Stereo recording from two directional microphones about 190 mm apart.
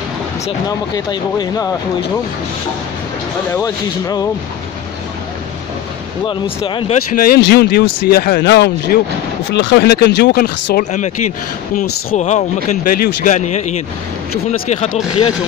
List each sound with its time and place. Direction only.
0.5 s speech: 20° left (ahead or behind)
3.5 s speech: 20° left (ahead or behind)
6.2 s speech: 25° left (ahead or behind)
7.2 s speech: 55° left (ahead or behind)
9.5 s speech: 65° left (ahead or behind); by 13.8 s 40° left (ahead or behind)